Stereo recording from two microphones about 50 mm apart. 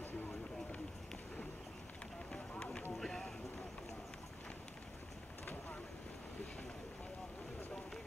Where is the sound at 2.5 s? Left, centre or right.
Centre.